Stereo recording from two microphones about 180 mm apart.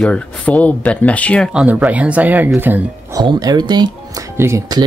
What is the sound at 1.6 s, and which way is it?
Speech, 10° right (ahead or behind).